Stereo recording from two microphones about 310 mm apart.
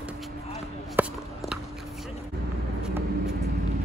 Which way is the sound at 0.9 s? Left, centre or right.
Centre.